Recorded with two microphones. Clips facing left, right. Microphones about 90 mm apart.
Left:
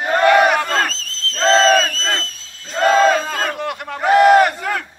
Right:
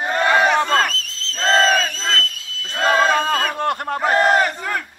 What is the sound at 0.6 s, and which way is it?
Crowd, 20° right (ahead or behind).